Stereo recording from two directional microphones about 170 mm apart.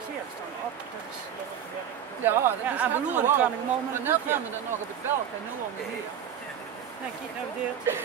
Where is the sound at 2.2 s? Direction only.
10° right (ahead or behind).